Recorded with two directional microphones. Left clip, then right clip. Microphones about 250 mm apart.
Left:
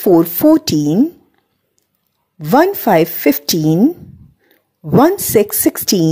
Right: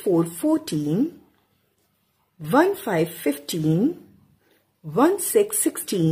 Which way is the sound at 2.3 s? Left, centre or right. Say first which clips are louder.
Left 7 dB; left.